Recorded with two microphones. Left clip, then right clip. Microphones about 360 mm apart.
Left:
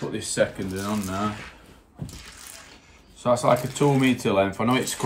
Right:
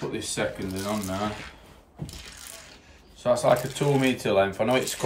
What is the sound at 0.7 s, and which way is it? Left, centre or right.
Speech, centre.